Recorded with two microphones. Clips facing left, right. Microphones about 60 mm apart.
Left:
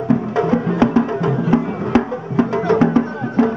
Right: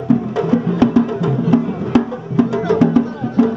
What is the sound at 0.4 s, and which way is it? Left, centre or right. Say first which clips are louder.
Music: left 1 dB; left.